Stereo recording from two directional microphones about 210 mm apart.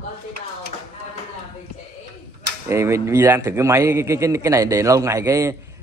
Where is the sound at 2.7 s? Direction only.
15° right (ahead or behind).